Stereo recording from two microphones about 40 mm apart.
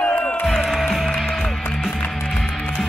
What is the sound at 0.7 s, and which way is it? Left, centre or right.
Music, centre.